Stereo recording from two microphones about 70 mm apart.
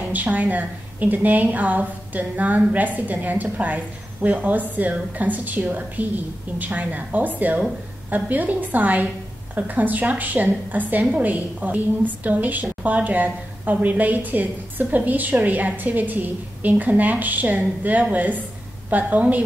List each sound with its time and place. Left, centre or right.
0.1 s a woman's voice: right